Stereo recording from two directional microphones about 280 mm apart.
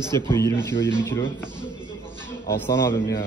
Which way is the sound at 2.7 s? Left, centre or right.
Centre.